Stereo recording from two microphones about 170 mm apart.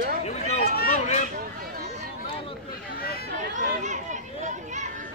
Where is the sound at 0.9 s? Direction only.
45° left (ahead or behind).